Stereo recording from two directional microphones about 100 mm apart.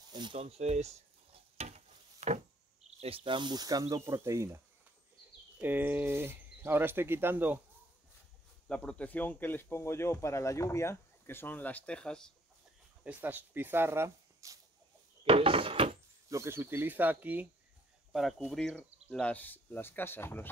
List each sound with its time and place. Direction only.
0.1 s speech: 50° right (ahead or behind)
0.4 s stir: 90° right
2.2 s a sound: 90° right
3.0 s speech: 65° right (ahead or behind); by 3.8 s 40° right (ahead or behind)
3.9 s speech: 30° right (ahead or behind)
5.6 s speech: 20° right (ahead or behind)
8.6 s speech: 10° left (ahead or behind)
13.0 s speech: 15° right (ahead or behind)
15.2 s a sound: 70° right (ahead or behind)
16.3 s speech: 30° right (ahead or behind)
19.0 s speech: 15° left (ahead or behind)